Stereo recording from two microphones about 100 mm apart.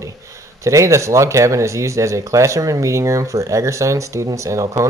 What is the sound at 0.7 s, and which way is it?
Speech, 30° right (ahead or behind).